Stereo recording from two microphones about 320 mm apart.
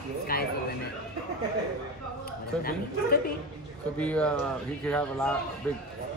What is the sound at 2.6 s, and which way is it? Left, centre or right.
Speech, left.